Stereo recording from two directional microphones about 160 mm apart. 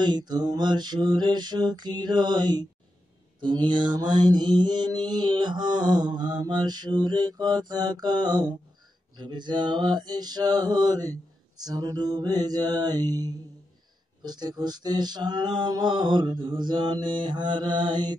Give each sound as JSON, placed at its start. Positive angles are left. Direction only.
{"t": 0.0, "sound": "mantra", "side_deg": -25}